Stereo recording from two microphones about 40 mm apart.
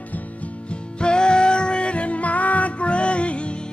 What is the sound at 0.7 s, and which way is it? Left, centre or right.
Music, left.